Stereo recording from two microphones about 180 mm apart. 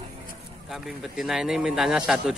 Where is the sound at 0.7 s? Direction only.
Centre (ahead or behind).